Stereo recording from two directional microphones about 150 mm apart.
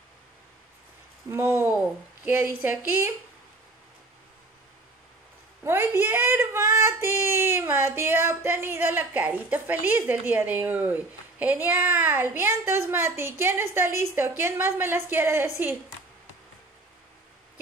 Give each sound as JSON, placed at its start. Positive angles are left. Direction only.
{"t": 1.3, "sound": "speech", "side_deg": -15}
{"t": 5.6, "sound": "speech", "side_deg": -15}